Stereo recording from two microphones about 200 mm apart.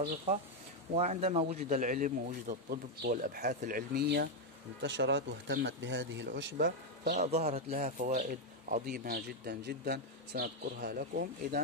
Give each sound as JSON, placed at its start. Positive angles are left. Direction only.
{"t": 0.9, "sound": "a man's voice", "side_deg": -30}
{"t": 7.2, "sound": "speech", "side_deg": -30}